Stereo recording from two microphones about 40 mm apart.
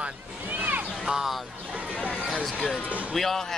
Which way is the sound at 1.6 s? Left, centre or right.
Right.